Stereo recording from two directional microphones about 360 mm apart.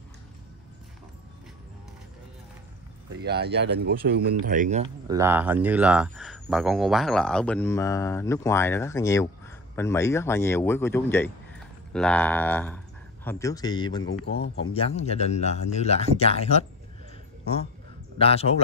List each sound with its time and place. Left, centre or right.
3.2 s speech: right
5.0 s speech: centre
14.0 s speech: left
14.7 s speech: centre
18.1 s speech: centre